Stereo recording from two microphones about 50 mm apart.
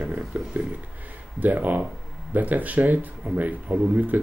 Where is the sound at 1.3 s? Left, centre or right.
Right.